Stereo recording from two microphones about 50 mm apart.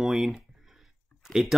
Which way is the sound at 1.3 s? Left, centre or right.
Centre.